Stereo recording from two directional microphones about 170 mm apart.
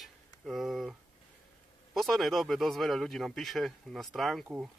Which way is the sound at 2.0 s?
Centre (ahead or behind).